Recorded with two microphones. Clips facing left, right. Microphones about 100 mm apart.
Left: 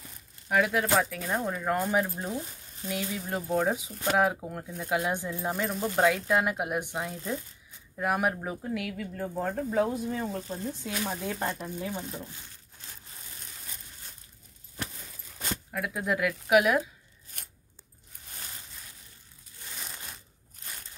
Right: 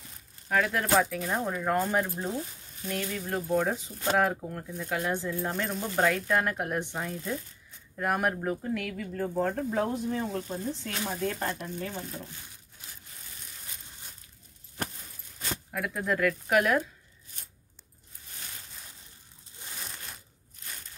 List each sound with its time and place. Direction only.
0.5 s speech: 5° left (ahead or behind)
5.5 s speech: 5° left (ahead or behind)
15.7 s speech: 5° left (ahead or behind)
17.3 s scissors: 50° left (ahead or behind)